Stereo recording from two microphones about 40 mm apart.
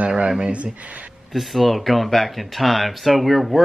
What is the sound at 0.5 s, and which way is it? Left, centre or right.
Speech, right.